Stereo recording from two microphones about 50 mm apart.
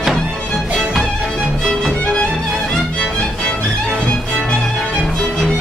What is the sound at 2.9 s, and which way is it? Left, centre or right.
Music, centre.